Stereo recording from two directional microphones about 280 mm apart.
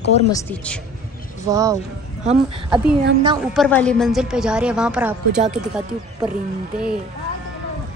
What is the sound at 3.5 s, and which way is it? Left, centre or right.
A woman's voice, centre.